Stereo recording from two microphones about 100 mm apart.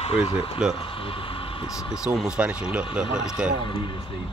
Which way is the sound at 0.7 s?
60° left (ahead or behind).